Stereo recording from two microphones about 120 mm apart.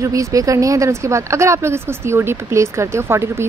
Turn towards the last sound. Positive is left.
turn(degrees=-20)  # may be behind; listen again after turning